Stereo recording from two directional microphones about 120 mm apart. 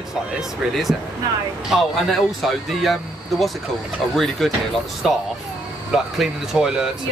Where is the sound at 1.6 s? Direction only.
Centre (ahead or behind).